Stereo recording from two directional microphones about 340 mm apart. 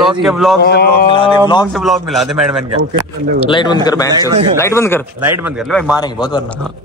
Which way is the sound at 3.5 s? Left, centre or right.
Centre.